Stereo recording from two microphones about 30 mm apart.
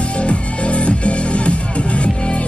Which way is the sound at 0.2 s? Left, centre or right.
Left.